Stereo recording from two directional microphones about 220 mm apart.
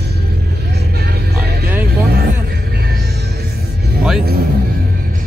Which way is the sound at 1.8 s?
45° right (ahead or behind).